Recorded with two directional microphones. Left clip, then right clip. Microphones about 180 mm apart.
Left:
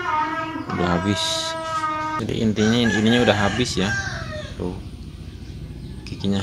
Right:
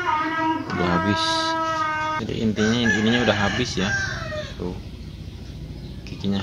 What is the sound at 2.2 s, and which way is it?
Speech, 30° left (ahead or behind).